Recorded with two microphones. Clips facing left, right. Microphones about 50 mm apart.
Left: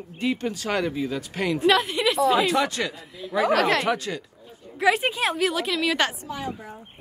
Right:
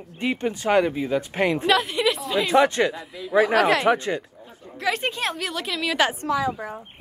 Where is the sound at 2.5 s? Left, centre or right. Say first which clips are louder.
Right 6 dB; right.